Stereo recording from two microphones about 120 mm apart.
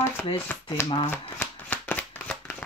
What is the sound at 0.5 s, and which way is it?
Speech, 15° left (ahead or behind).